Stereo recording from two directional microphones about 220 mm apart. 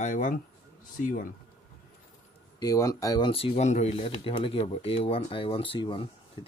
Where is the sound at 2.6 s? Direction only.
15° left (ahead or behind).